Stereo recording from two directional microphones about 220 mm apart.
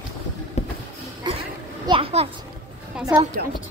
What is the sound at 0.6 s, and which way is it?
Music, 30° left (ahead or behind).